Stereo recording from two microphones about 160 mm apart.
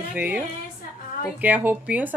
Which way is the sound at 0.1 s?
10° right (ahead or behind).